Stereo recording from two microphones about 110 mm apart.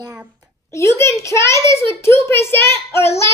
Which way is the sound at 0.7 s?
25° left (ahead or behind).